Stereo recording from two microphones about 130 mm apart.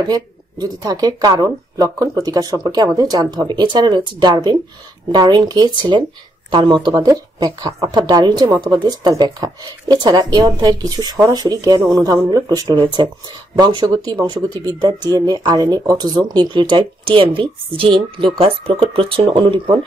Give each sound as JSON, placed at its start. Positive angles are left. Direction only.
{"t": 0.1, "sound": "a woman's voice", "side_deg": -30}